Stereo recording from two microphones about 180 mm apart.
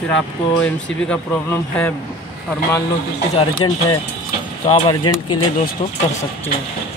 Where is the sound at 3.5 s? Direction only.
25° left (ahead or behind).